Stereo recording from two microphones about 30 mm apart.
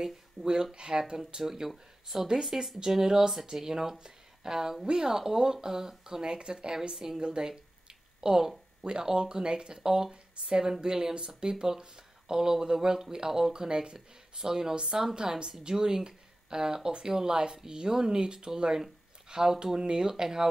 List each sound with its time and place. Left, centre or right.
0.0 s speech: right
1.1 s speech: centre
2.9 s speech: centre
7.2 s a woman's voice: right
8.2 s speech: right